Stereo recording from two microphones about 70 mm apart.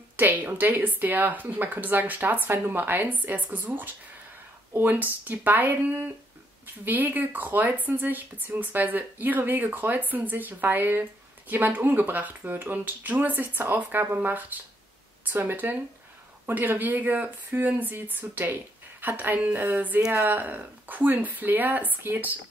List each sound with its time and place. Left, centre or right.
0.2 s speech: right